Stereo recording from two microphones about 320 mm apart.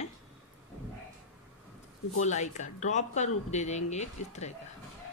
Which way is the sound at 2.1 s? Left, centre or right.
Left.